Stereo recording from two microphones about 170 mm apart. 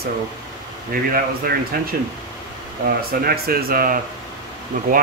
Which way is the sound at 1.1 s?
60° right (ahead or behind).